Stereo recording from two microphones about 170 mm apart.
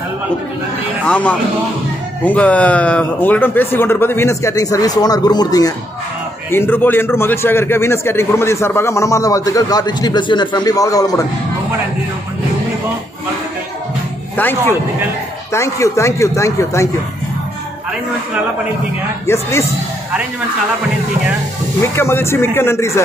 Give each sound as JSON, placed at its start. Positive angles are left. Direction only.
{"t": 1.0, "sound": "a man's voice", "side_deg": 10}
{"t": 14.3, "sound": "a man's voice", "side_deg": 10}
{"t": 19.2, "sound": "a man's voice", "side_deg": 15}
{"t": 21.9, "sound": "a man's voice", "side_deg": 15}